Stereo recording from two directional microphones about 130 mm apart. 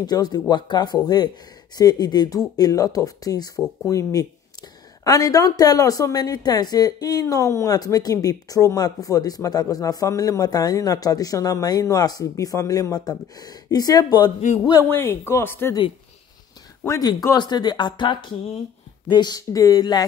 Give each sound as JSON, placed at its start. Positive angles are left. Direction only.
{"t": 0.0, "sound": "a woman's voice", "side_deg": 30}
{"t": 14.9, "sound": "speech", "side_deg": 20}
{"t": 16.8, "sound": "a woman's voice", "side_deg": 25}